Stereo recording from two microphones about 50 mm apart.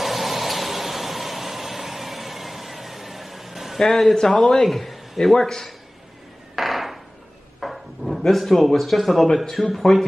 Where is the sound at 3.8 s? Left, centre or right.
Centre.